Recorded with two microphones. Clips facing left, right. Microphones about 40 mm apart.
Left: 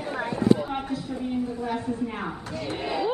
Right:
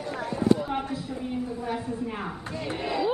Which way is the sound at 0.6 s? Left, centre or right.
Centre.